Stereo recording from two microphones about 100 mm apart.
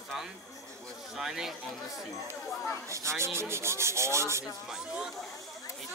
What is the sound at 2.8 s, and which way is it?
Rub, 30° right (ahead or behind).